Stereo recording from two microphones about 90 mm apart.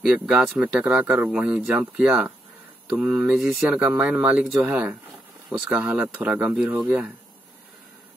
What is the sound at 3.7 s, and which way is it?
Speech, 15° right (ahead or behind).